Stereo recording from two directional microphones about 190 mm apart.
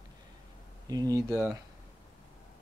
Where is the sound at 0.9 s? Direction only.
20° right (ahead or behind).